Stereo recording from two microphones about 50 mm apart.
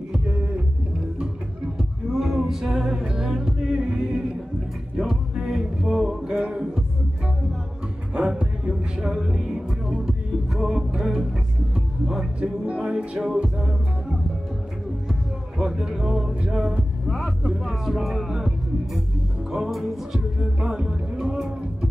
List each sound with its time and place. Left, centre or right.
1.8 s music: centre
4.9 s music: centre
8.1 s music: centre
15.5 s music: centre
17.6 s music: centre
19.5 s music: centre